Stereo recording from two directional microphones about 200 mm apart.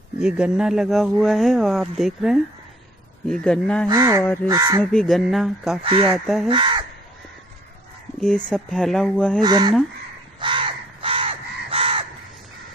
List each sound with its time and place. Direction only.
0.2 s speech: 5° right (ahead or behind)
3.9 s speech: 20° right (ahead or behind)
4.9 s speech: centre (ahead or behind)
5.8 s speech: 25° right (ahead or behind)
6.1 s speech: centre (ahead or behind)
6.5 s speech: 25° right (ahead or behind)
8.5 s speech: centre (ahead or behind)
9.4 s speech: 20° right (ahead or behind)
10.4 s crow: 25° right (ahead or behind)